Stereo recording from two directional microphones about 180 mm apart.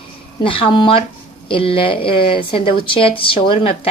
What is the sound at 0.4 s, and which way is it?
A woman's voice, 30° left (ahead or behind).